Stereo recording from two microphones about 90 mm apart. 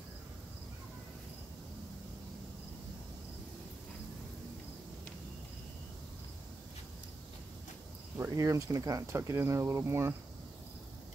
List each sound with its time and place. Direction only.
8.2 s speech: 35° right (ahead or behind)